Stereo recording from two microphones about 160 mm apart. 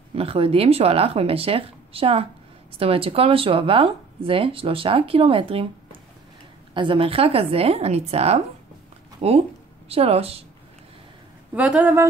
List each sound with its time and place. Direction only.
0.1 s speech: 40° right (ahead or behind)
11.5 s speech: 10° right (ahead or behind)